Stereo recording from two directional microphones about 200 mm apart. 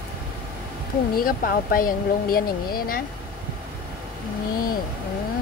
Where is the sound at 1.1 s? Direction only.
45° left (ahead or behind).